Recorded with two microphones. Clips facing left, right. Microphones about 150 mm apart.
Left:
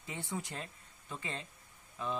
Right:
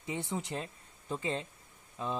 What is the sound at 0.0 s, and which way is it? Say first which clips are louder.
Speech: right 4 dB; 20° right (ahead or behind).